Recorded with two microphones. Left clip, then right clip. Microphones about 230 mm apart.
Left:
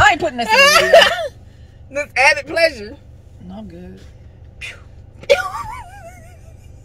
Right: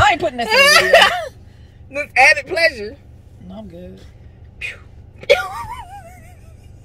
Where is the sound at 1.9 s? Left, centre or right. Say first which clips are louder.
Right 2 dB; centre.